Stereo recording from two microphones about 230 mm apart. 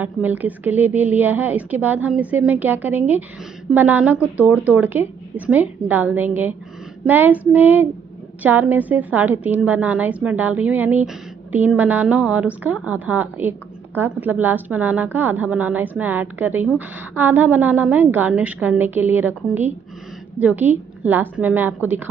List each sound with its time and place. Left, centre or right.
0.0 s a woman's voice: centre